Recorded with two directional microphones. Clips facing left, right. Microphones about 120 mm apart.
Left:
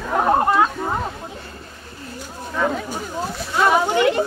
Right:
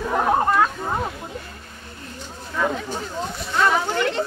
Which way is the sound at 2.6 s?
5° left (ahead or behind).